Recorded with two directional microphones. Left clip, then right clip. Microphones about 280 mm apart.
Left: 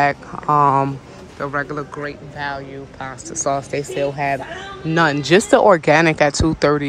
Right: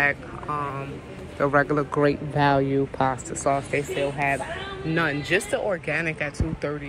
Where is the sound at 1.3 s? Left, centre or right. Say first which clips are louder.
Right 2 dB; centre.